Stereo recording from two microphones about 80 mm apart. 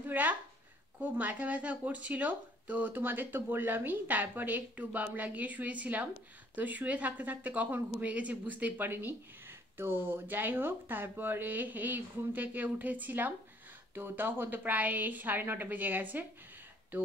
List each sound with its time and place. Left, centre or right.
0.0 s speech: right